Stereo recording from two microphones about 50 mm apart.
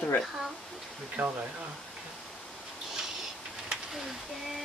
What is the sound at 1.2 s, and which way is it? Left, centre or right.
Speech, right.